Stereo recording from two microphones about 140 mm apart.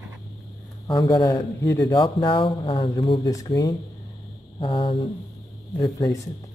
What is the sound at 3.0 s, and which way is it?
Speech, 25° left (ahead or behind).